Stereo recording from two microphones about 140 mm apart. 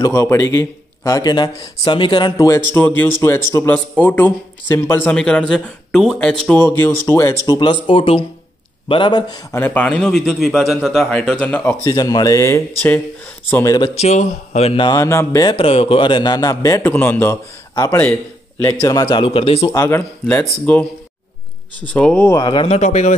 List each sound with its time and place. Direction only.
0.0 s a man's voice: 20° left (ahead or behind); by 6.3 s 5° left (ahead or behind)
6.6 s speech: 15° left (ahead or behind)
7.4 s a man's voice: 30° left (ahead or behind)
9.5 s a man's voice: 15° left (ahead or behind)
11.8 s speech: 25° left (ahead or behind)
13.9 s speech: 50° left (ahead or behind)
14.8 s speech: 25° left (ahead or behind)
15.5 s a man's voice: 40° left (ahead or behind); by 17.4 s 15° left (ahead or behind)
18.7 s a man's voice: 25° left (ahead or behind); by 19.7 s 45° left (ahead or behind)
19.7 s speech: 20° left (ahead or behind)
22.3 s a man's voice: 30° left (ahead or behind)
22.7 s speech: 55° left (ahead or behind)